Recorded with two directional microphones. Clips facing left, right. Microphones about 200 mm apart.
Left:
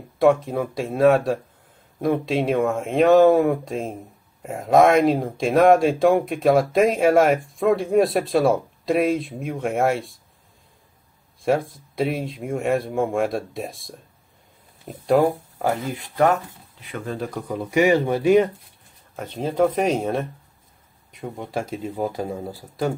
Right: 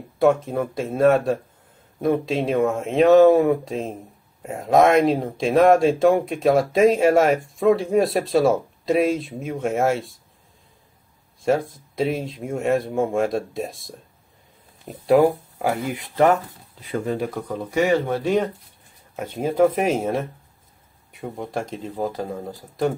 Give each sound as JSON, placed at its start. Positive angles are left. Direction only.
{"t": 0.2, "sound": "speech", "side_deg": 0}
{"t": 11.4, "sound": "speech", "side_deg": 0}
{"t": 17.3, "sound": "speech", "side_deg": 0}
{"t": 17.6, "sound": "speech", "side_deg": 15}
{"t": 19.1, "sound": "speech", "side_deg": -10}